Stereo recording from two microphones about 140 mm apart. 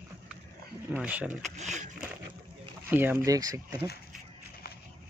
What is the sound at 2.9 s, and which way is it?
Speech, 15° right (ahead or behind).